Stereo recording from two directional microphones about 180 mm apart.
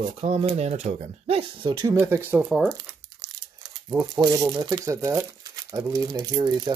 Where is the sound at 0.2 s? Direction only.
35° right (ahead or behind); by 2.4 s 15° right (ahead or behind).